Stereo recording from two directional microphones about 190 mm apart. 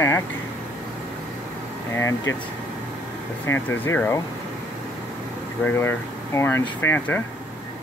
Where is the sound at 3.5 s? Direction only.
10° left (ahead or behind).